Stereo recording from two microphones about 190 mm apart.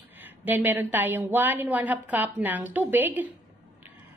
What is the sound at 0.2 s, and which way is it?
Speech, 10° right (ahead or behind).